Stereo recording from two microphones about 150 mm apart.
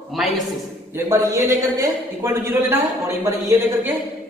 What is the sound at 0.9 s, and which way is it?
A man's voice, 15° right (ahead or behind).